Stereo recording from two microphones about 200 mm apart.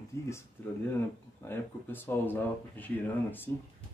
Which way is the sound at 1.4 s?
10° left (ahead or behind).